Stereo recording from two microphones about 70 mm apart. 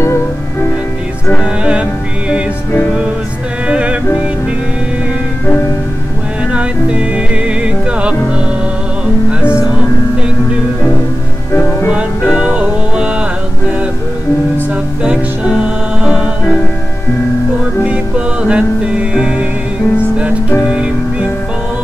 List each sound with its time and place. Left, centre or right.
1.4 s music: centre
3.6 s music: centre
6.5 s music: centre
11.9 s music: centre
15.0 s music: centre
18.5 s music: centre
20.6 s music: centre